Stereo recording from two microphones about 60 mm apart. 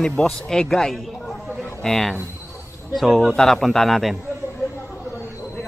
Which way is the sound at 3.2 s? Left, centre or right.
Centre.